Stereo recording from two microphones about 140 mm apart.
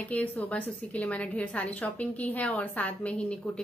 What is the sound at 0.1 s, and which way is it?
A woman's voice, 10° left (ahead or behind).